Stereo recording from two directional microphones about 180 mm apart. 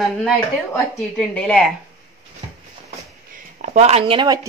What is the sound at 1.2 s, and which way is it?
Speech, 5° left (ahead or behind).